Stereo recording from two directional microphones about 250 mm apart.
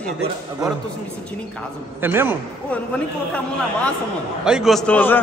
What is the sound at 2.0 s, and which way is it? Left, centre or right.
Speech, centre.